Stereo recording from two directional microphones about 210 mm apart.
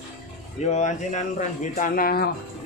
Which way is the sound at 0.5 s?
35° left (ahead or behind).